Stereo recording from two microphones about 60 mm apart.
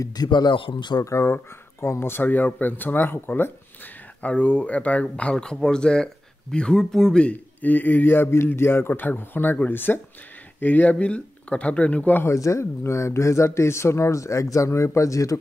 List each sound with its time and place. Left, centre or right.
0.2 s speech: left
1.0 s speech: left
4.2 s speech: left
7.6 s speech: left
12.4 s speech: left